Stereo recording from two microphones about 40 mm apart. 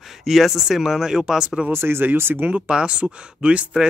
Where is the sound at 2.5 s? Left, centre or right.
Right.